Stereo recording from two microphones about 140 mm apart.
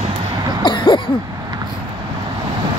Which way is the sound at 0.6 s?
35° left (ahead or behind).